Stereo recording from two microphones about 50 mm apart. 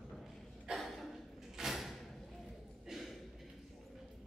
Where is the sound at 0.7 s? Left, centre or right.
Centre.